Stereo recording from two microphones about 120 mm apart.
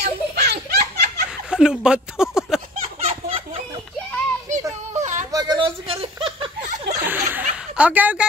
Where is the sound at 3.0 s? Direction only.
55° right (ahead or behind).